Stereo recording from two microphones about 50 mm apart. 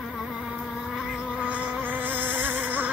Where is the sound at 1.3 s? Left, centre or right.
Right.